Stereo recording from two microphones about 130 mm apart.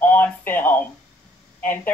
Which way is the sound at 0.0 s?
15° left (ahead or behind).